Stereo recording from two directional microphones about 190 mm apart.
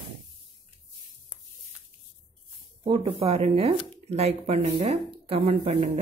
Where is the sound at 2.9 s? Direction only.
30° right (ahead or behind).